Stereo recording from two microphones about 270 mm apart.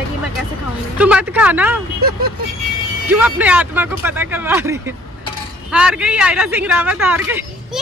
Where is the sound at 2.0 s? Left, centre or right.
Right.